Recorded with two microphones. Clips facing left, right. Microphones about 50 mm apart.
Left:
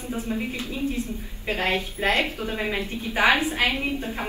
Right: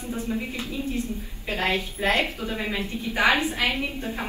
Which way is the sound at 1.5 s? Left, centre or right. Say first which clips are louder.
Left 1 dB; left.